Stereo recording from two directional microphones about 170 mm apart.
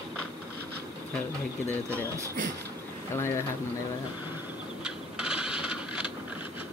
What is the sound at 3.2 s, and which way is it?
Speech, 15° left (ahead or behind).